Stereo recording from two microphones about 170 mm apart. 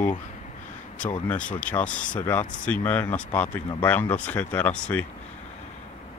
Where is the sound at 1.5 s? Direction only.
10° left (ahead or behind).